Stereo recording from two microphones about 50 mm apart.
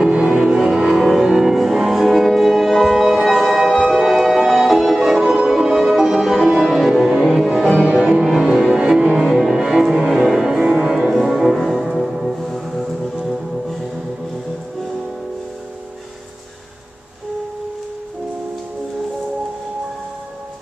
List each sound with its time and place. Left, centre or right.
0.0 s music: centre
5.2 s music: centre
7.7 s music: right
8.2 s music: centre